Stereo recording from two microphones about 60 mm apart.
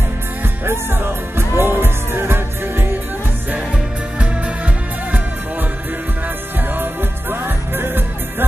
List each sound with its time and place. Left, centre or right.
0.7 s music: right
6.8 s music: right